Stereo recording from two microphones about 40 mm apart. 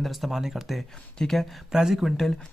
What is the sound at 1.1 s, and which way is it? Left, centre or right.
Speech, centre.